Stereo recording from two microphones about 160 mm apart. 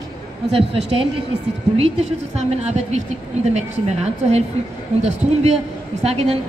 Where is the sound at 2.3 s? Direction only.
45° right (ahead or behind).